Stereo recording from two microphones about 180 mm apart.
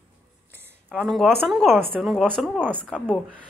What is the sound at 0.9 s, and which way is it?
A woman's voice, centre (ahead or behind).